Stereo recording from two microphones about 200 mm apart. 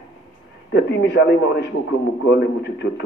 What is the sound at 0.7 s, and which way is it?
A man's voice, 60° left (ahead or behind).